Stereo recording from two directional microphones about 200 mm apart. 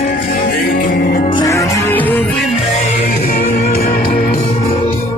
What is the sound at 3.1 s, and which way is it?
Music, 45° left (ahead or behind).